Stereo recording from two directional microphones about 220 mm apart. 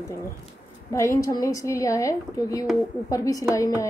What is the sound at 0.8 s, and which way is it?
Speech, 15° left (ahead or behind).